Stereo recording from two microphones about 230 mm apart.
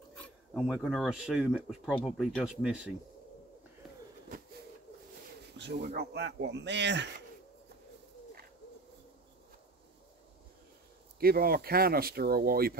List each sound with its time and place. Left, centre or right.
0.2 s speech: centre
5.8 s speech: right
11.1 s speech: right